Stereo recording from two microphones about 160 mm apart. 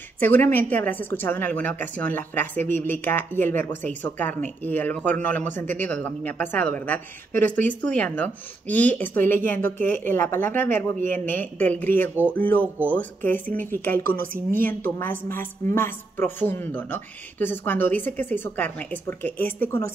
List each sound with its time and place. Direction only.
0.2 s a woman's voice: 10° left (ahead or behind)
14.1 s a woman's voice: 60° right (ahead or behind)
14.6 s a woman's voice: 10° left (ahead or behind)